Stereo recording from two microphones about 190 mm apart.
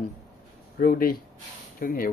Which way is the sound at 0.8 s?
50° left (ahead or behind).